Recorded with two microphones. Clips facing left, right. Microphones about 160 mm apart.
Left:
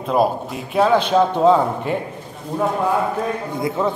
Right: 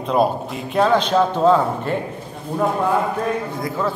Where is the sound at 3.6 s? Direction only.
20° left (ahead or behind).